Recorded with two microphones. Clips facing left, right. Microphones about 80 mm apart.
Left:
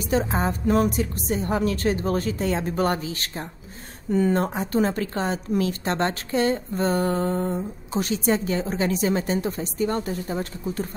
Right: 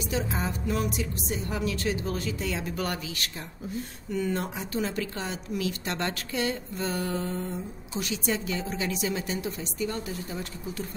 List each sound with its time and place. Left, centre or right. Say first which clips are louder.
0.0 s a woman's voice: left 7 dB; left